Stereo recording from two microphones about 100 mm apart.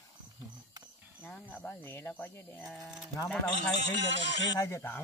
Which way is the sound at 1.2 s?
15° left (ahead or behind).